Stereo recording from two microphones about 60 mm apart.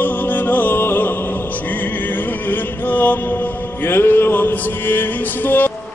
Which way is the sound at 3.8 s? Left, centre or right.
Left.